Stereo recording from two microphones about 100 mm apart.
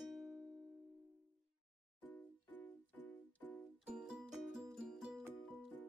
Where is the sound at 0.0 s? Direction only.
Centre (ahead or behind).